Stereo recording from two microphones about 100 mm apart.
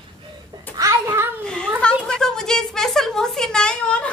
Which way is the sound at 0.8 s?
30° right (ahead or behind).